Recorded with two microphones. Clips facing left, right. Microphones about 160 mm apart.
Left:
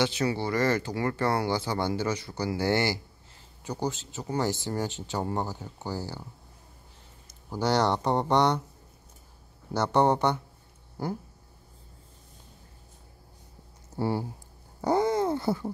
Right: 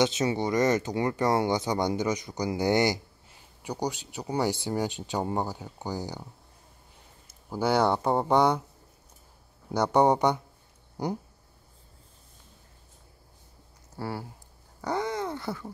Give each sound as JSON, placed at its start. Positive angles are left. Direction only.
{"t": 0.0, "sound": "speech", "side_deg": -20}
{"t": 7.2, "sound": "speech", "side_deg": -10}
{"t": 9.7, "sound": "speech", "side_deg": -10}
{"t": 11.0, "sound": "a sound", "side_deg": -20}
{"t": 13.9, "sound": "speech", "side_deg": 25}
{"t": 14.8, "sound": "a sound", "side_deg": 30}